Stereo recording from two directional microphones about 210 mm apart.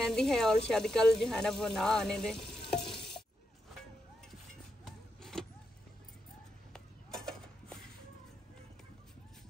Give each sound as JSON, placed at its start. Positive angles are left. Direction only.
{"t": 0.0, "sound": "speech", "side_deg": 5}
{"t": 2.8, "sound": "stir", "side_deg": 25}
{"t": 4.8, "sound": "vehicle", "side_deg": 0}
{"t": 6.7, "sound": "a sound", "side_deg": 0}